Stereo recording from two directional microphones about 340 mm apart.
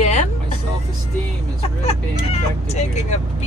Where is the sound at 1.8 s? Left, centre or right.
Centre.